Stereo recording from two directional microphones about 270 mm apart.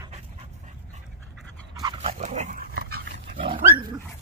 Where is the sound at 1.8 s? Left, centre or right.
Centre; by 3.1 s right.